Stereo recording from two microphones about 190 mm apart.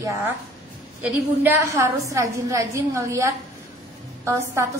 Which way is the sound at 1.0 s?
10° right (ahead or behind).